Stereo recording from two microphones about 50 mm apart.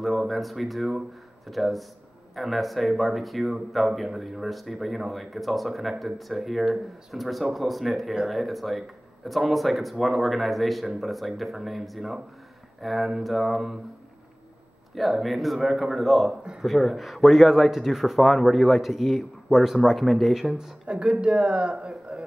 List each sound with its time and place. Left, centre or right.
0.0 s speech: centre
15.0 s speech: centre
20.5 s speech: centre